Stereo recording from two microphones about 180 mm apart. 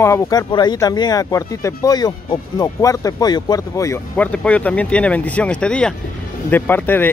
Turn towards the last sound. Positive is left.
turn(degrees=10)  # may be behind; listen again after turning